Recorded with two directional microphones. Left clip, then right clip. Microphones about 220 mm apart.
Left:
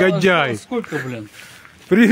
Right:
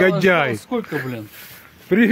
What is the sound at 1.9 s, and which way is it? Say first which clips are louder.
Speech: left 2 dB; 15° left (ahead or behind).